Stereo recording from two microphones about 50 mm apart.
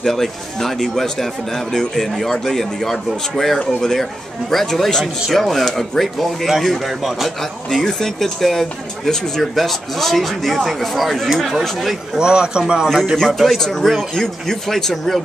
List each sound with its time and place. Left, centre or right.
0.0 s a man's voice: centre
7.7 s a man's voice: centre
12.2 s speech: centre
13.4 s speech: centre